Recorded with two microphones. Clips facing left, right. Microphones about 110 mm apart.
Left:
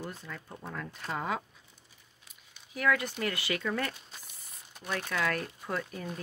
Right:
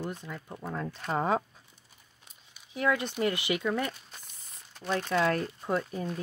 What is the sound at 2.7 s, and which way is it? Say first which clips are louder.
Speech: right 1 dB; 25° right (ahead or behind).